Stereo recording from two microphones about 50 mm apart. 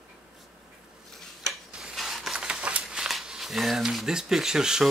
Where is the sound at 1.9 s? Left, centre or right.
Centre.